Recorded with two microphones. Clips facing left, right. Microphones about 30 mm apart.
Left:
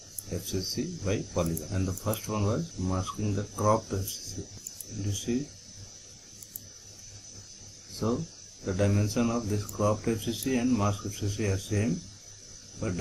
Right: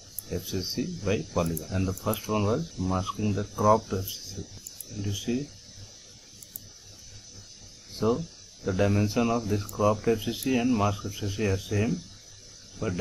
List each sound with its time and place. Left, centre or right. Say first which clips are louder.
0.3 s speech: right 1 dB; centre
7.9 s speech: right 4 dB; right